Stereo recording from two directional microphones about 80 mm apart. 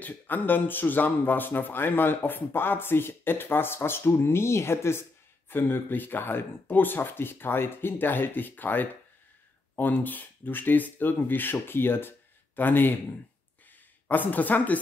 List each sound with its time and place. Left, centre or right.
0.0 s a man's voice: left
14.0 s a man's voice: left